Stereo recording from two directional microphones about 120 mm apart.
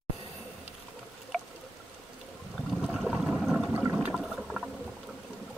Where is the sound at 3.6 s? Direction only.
15° right (ahead or behind).